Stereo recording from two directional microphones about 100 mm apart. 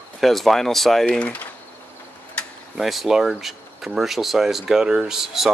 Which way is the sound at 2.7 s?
Centre (ahead or behind).